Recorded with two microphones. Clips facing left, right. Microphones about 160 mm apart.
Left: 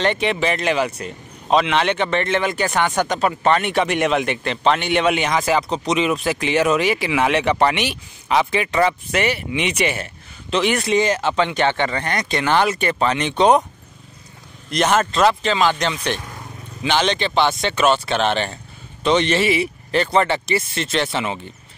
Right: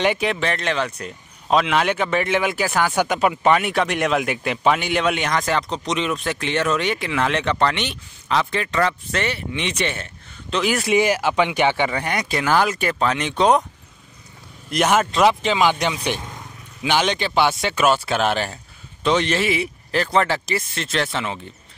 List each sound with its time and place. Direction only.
0.0 s speech: 5° right (ahead or behind)
14.7 s speech: 10° right (ahead or behind)